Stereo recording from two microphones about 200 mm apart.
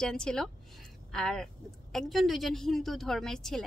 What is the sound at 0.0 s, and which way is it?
Speech, 5° left (ahead or behind).